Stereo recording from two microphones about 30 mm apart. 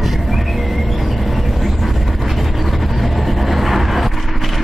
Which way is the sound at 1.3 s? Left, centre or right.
Centre.